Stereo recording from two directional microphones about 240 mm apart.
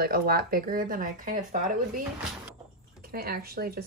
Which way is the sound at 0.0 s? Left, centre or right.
Right.